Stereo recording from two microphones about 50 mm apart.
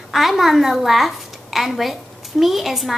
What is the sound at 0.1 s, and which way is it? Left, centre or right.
A woman's voice, centre.